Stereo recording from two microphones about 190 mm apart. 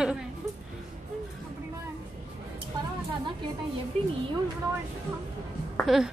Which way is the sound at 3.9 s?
35° right (ahead or behind).